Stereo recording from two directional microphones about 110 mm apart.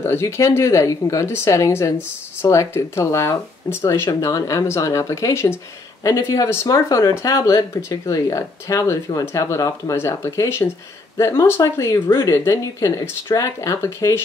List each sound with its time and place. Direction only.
0.0 s speech: 25° left (ahead or behind)